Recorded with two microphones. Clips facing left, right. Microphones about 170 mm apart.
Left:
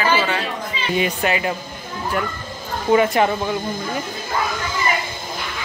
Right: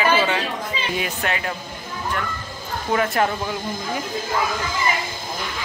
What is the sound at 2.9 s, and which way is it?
Speech, centre (ahead or behind).